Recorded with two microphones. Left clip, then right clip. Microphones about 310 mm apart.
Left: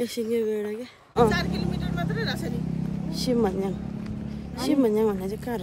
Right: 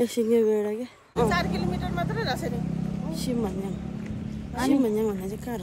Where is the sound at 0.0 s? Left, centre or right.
Centre.